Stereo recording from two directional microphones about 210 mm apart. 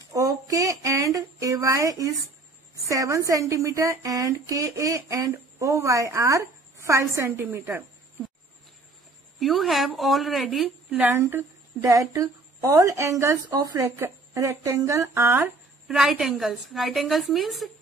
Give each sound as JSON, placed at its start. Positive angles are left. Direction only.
{"t": 0.1, "sound": "a sound", "side_deg": -15}
{"t": 2.7, "sound": "a woman's voice", "side_deg": -15}
{"t": 9.4, "sound": "a woman's voice", "side_deg": 0}